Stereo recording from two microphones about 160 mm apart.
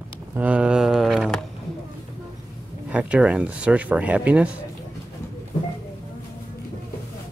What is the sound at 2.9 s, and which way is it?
Speech, 10° right (ahead or behind).